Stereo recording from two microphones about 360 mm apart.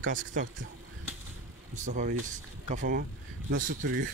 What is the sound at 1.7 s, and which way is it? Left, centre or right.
Speech, right.